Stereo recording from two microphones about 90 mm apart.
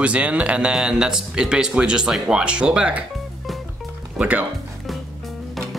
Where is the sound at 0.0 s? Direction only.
15° right (ahead or behind).